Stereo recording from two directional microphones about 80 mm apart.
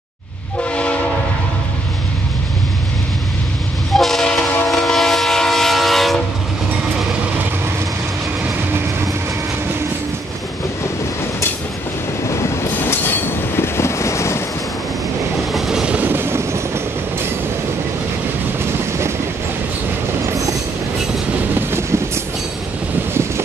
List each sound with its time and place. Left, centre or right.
3.9 s train: centre
12.7 s train: left
15.5 s train: centre
16.0 s train: right
18.6 s train: right
21.5 s vehicle: right